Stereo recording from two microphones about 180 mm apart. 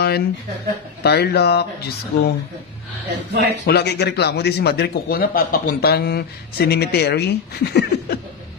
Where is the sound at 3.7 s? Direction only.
65° left (ahead or behind).